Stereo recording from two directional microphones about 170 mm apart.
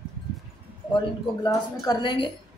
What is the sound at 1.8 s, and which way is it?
Speech, 30° left (ahead or behind).